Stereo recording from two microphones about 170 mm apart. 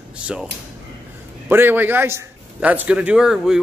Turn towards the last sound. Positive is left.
turn(degrees=-5)  # may be behind; listen again after turning